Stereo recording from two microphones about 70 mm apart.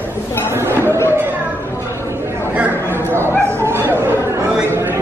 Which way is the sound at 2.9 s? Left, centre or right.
Right.